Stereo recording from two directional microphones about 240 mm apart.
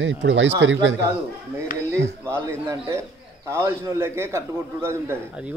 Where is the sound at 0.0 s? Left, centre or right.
Right.